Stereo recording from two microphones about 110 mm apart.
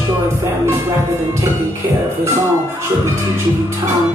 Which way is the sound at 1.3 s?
25° right (ahead or behind).